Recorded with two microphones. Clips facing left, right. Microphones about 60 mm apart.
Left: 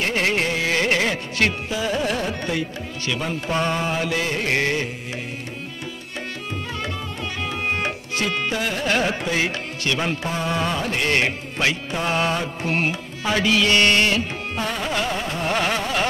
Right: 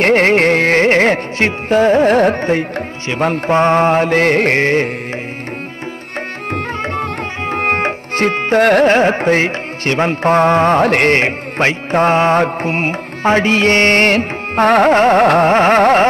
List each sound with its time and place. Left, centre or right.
0.0 s carnatic music: right
1.7 s music: right
6.8 s tabla: right
8.8 s music: right
11.1 s music: right
15.4 s music: right